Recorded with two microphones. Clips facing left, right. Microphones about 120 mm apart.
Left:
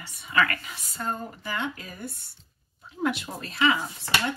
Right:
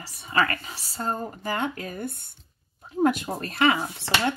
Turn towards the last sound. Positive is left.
turn(degrees=-55)  # may be behind; listen again after turning